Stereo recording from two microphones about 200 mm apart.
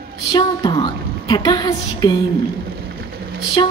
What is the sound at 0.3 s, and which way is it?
A woman's voice, 20° left (ahead or behind).